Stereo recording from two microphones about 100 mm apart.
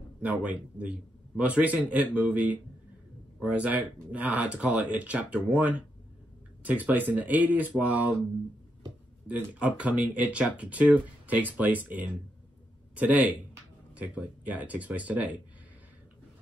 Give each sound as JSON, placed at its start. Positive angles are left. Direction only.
{"t": 0.2, "sound": "speech", "side_deg": -15}
{"t": 9.3, "sound": "speech", "side_deg": -15}